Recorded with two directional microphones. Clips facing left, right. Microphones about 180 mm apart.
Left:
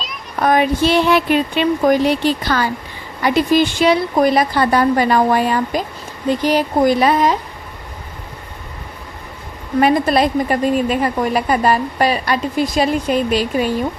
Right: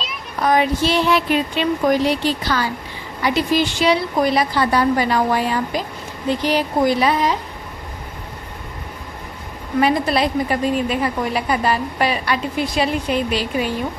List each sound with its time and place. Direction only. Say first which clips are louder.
0.4 s a woman's voice: left 3 dB; 55° left (ahead or behind)
9.8 s a woman's voice: left 3 dB; 50° left (ahead or behind)